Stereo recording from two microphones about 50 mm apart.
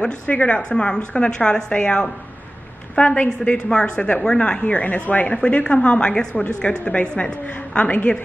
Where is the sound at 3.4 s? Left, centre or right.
Centre.